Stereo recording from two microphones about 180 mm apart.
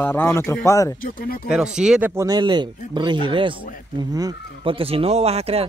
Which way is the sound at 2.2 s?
25° right (ahead or behind).